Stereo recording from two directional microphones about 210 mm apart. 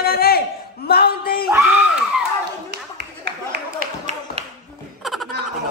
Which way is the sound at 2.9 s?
50° right (ahead or behind).